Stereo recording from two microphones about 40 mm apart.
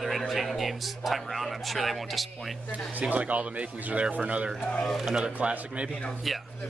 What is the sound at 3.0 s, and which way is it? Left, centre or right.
Speech, right.